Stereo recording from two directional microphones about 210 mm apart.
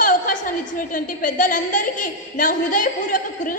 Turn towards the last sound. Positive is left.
turn(degrees=40)  # may be behind; listen again after turning